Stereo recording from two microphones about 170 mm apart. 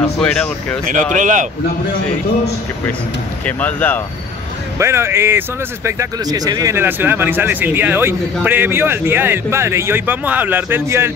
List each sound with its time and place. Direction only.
0.0 s speech: 5° left (ahead or behind)
1.1 s a man's voice: 45° right (ahead or behind)
3.4 s speech: 10° left (ahead or behind)
4.7 s speech: 15° right (ahead or behind)